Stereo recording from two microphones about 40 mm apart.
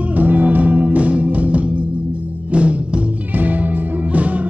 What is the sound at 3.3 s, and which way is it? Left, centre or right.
Music, right.